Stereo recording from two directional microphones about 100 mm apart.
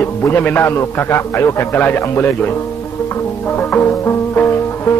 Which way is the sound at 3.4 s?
20° left (ahead or behind).